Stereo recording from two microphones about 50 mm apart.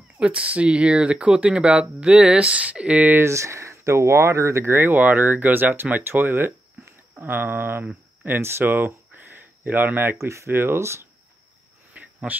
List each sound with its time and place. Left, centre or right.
0.2 s speech: right
3.2 s speech: right
4.7 s speech: right
8.6 s speech: right
10.1 s speech: right
11.9 s cricket: right